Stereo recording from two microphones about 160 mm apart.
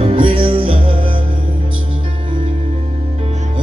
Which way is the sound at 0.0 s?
35° right (ahead or behind).